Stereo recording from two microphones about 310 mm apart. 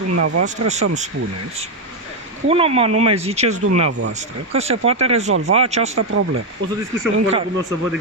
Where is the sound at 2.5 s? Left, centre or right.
Centre.